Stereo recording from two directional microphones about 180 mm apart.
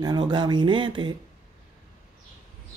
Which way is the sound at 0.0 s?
25° right (ahead or behind).